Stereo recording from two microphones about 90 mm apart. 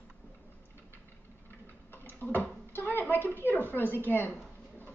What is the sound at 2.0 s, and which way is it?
Bathtub, 20° left (ahead or behind).